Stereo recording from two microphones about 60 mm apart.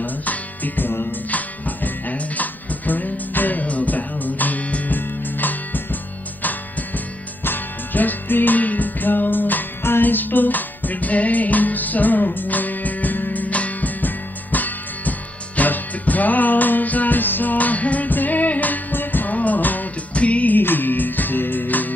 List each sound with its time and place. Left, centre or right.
0.0 s music: left
7.4 s music: left